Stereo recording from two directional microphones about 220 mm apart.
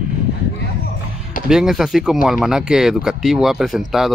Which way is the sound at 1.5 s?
Centre (ahead or behind).